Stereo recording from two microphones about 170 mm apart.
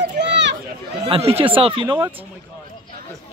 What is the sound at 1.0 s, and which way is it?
Speech, 35° right (ahead or behind).